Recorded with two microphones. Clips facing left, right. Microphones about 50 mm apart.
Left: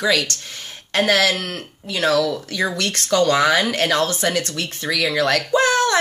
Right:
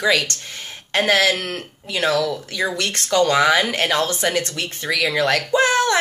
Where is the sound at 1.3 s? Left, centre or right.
Right.